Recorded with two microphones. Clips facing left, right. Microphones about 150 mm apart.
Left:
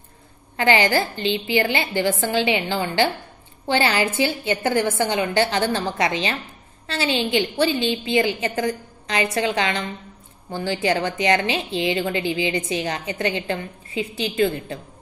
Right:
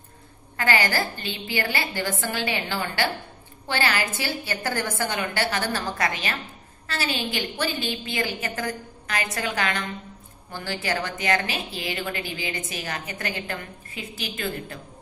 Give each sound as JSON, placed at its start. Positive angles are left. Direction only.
{"t": 0.6, "sound": "a woman's voice", "side_deg": 25}